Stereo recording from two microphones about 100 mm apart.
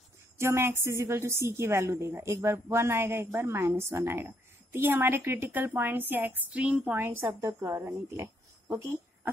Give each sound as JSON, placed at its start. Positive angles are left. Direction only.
{"t": 0.4, "sound": "a woman's voice", "side_deg": -25}